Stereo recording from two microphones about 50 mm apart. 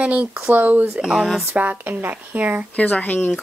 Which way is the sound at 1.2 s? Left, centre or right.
Centre.